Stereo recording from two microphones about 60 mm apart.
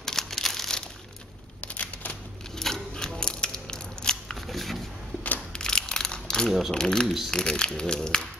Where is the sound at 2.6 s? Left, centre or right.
Centre.